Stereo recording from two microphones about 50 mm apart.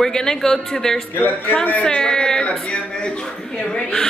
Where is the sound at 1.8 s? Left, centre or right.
Centre.